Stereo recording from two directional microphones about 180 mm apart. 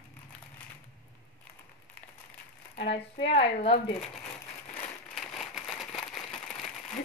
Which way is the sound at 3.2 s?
35° left (ahead or behind).